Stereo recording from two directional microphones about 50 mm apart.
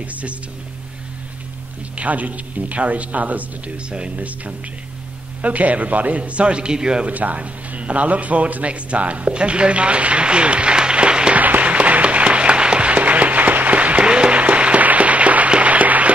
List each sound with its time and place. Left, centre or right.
0.0 s speech: right
2.0 s speech: right
3.9 s speech: right
5.4 s speech: right
7.1 s a man's voice: right
11.3 s applause: right